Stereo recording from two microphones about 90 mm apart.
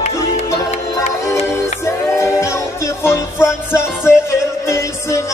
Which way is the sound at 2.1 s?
30° left (ahead or behind).